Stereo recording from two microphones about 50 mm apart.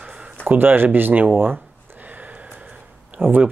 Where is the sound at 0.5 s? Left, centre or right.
Right.